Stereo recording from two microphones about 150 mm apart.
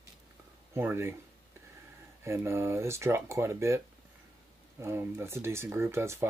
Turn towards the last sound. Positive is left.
turn(degrees=-15)  # may be behind; listen again after turning